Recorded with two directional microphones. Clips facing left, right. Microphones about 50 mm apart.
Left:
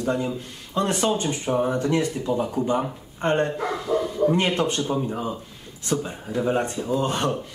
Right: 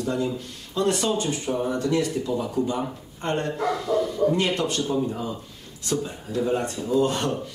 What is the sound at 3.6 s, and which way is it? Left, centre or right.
Speech, centre.